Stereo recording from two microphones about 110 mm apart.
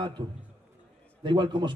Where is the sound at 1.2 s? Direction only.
45° right (ahead or behind).